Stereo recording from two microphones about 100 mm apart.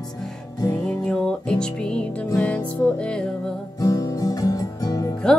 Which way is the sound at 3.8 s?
35° left (ahead or behind).